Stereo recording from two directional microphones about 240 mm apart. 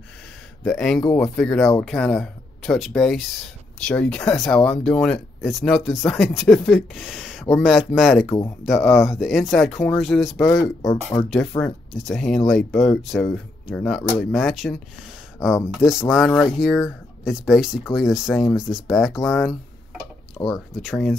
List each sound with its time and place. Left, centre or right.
0.7 s speech: centre
11.9 s speech: centre
15.8 s speech: centre
19.2 s tick-tock: centre
20.8 s speech: centre